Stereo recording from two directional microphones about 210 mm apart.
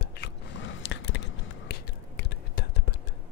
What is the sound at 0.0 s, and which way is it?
Biting, 55° left (ahead or behind).